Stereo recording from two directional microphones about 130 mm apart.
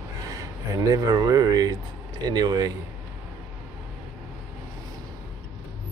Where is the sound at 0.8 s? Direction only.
30° right (ahead or behind).